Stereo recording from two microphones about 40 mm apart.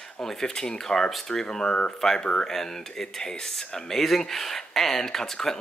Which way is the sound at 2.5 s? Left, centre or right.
Centre.